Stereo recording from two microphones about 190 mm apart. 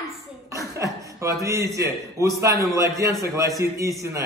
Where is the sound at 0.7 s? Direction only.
15° right (ahead or behind).